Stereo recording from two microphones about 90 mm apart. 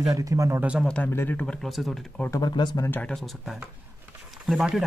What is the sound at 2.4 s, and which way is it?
Speech, 50° left (ahead or behind).